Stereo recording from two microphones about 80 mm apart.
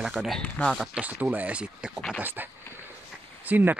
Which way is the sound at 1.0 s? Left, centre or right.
Centre.